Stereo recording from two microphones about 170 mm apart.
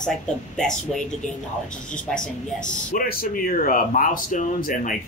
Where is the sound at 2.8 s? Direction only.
55° left (ahead or behind).